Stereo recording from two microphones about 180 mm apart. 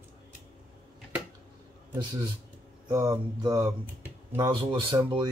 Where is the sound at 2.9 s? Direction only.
20° right (ahead or behind).